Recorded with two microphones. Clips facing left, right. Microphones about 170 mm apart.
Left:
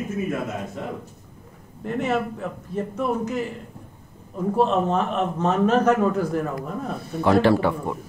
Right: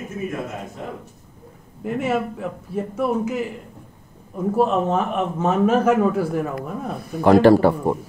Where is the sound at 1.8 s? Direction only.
5° right (ahead or behind).